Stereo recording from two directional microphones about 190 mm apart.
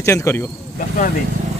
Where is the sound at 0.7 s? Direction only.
45° left (ahead or behind).